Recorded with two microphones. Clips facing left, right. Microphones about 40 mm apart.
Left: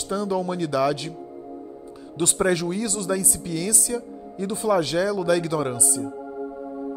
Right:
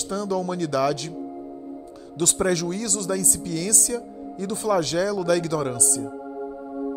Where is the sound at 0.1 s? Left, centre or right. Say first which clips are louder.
Left 1 dB; centre.